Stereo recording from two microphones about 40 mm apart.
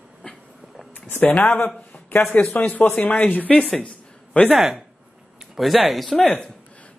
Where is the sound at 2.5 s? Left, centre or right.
Left.